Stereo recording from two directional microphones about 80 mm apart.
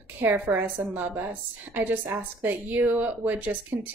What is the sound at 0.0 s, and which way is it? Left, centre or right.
Speech, right.